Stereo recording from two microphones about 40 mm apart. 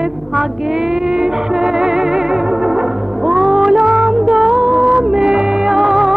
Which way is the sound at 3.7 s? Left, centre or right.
Centre.